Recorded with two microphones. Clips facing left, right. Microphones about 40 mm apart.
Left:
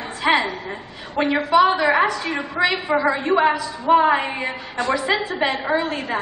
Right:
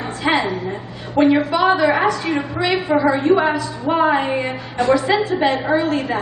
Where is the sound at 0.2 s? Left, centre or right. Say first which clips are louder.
Even; centre.